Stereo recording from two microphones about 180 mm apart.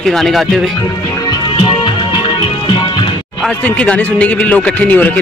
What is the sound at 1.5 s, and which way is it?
Music, 25° left (ahead or behind).